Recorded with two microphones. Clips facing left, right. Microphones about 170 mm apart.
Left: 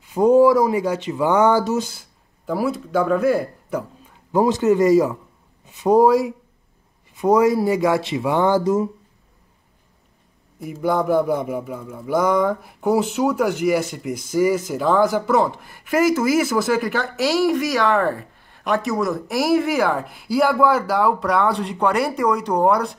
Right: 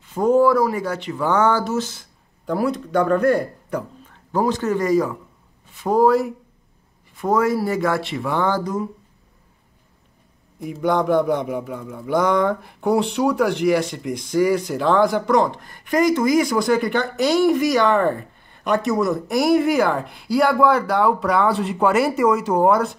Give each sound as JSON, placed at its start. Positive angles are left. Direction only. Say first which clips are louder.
{"t": 0.0, "sound": "speech", "louder": "left 3 dB", "side_deg": 15}
{"t": 4.3, "sound": "speech", "louder": "left 4 dB", "side_deg": 20}
{"t": 10.6, "sound": "speech", "louder": "right 1 dB", "side_deg": 5}